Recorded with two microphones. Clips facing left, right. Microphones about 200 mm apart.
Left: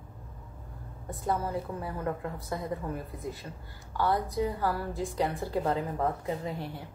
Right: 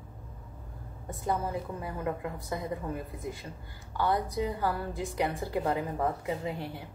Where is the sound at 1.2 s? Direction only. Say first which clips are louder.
Left 1 dB; 15° right (ahead or behind).